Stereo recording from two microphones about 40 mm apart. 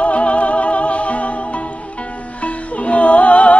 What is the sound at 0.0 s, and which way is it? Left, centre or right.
Music, left.